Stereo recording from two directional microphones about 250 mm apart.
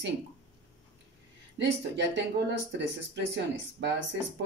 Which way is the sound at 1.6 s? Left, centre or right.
Right.